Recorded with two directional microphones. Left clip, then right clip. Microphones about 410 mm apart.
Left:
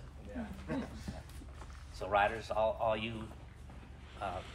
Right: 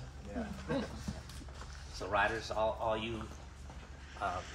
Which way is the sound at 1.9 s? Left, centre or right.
Left.